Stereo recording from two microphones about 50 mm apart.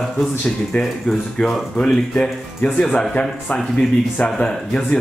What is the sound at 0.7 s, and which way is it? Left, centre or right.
Speech, left.